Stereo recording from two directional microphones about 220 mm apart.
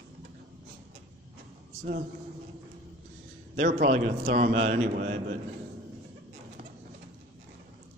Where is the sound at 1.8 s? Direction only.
40° right (ahead or behind).